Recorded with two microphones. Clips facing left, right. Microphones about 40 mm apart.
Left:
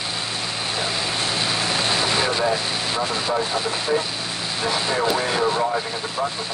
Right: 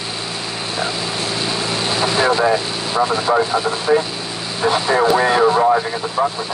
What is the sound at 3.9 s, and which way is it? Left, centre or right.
Speech, right.